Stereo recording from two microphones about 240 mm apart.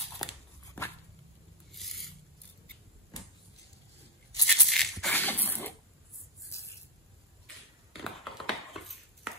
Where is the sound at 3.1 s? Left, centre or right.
Centre.